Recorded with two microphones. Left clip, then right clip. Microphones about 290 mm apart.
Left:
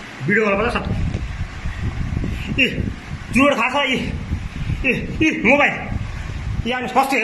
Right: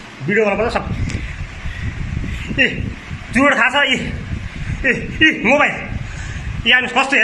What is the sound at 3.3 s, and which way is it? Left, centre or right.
A man's voice, centre.